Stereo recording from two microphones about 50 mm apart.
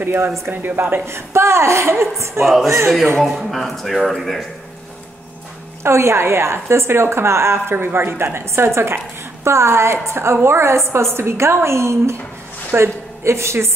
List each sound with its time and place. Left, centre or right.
0.0 s speech: right
1.0 s a woman's voice: right
3.3 s speech: centre
5.9 s a woman's voice: right